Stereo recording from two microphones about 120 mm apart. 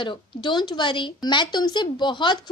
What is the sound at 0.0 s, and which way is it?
Speech, 40° left (ahead or behind).